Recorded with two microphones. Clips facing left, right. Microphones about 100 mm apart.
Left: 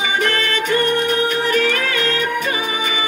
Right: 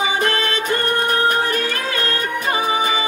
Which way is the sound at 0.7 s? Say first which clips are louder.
Left 3 dB; 40° right (ahead or behind).